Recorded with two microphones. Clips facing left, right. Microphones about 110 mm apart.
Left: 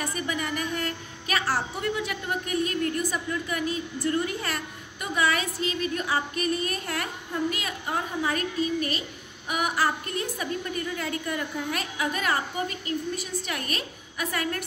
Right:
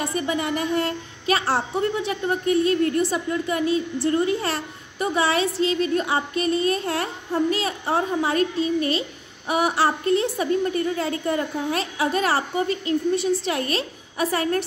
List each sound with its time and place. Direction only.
0.0 s a woman's voice: 25° right (ahead or behind)